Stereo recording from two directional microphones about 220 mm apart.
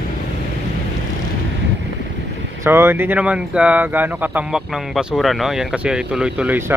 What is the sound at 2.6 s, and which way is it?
Speech, 10° right (ahead or behind).